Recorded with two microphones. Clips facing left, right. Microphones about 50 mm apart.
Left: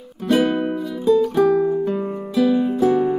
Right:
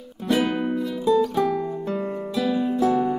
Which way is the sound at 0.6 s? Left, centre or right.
Centre.